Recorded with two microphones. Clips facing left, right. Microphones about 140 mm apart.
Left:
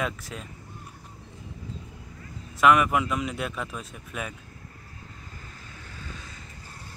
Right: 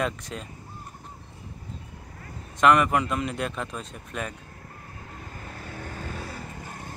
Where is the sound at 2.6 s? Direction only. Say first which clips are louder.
Right 1 dB; 5° left (ahead or behind).